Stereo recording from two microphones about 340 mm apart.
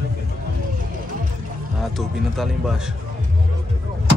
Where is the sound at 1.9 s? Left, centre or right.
Centre.